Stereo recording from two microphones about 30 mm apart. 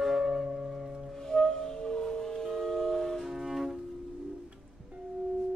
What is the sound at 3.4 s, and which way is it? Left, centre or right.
Music, centre.